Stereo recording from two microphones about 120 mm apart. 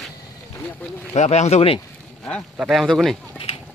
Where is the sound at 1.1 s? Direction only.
70° left (ahead or behind).